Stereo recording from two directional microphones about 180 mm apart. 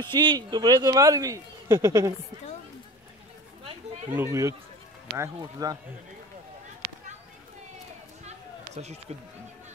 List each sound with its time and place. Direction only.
0.2 s speech: 25° right (ahead or behind)
4.1 s speech: 15° right (ahead or behind)